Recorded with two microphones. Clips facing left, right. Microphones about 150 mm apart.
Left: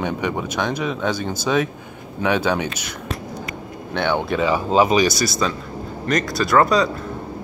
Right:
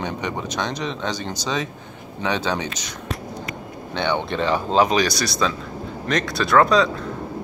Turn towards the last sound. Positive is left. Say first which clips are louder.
# even
turn(degrees=0)  # may be behind; listen again after turning